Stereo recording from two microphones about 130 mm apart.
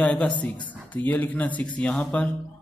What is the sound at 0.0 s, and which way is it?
A man's voice, 10° left (ahead or behind).